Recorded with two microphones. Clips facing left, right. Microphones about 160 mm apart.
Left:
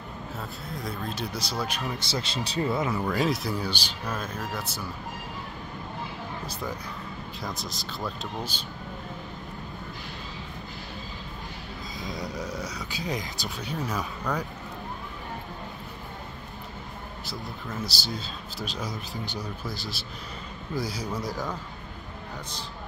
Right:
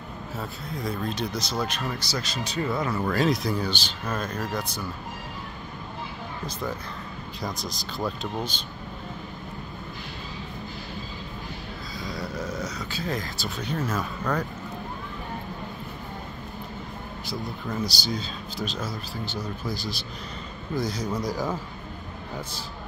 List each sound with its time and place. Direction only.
0.4 s speech: centre (ahead or behind)
2.0 s speech: 25° left (ahead or behind)
3.1 s speech: 5° left (ahead or behind)
7.4 s speech: centre (ahead or behind)
12.0 s speech: 20° left (ahead or behind)
17.8 s speech: 5° left (ahead or behind)
19.7 s speech: centre (ahead or behind)